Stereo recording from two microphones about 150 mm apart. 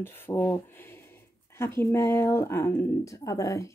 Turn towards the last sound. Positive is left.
turn(degrees=20)  # may be behind; listen again after turning